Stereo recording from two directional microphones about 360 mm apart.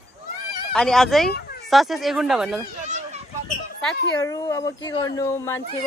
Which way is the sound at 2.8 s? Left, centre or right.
Centre.